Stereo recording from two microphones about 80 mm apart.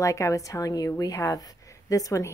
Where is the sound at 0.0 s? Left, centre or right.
Left.